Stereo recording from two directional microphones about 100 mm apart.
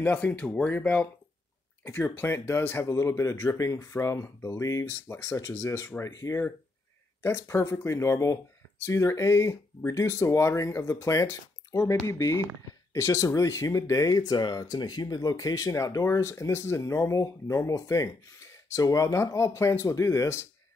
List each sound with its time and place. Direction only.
0.0 s speech: 15° left (ahead or behind)